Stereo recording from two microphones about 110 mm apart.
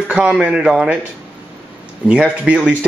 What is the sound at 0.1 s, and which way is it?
Speech, 10° right (ahead or behind).